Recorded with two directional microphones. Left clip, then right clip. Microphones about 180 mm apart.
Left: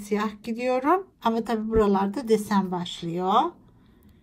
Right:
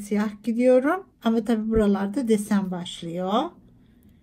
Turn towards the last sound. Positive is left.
turn(degrees=60)  # may be behind; listen again after turning